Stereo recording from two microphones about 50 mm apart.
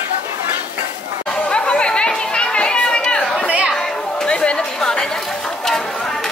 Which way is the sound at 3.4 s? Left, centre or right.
Right.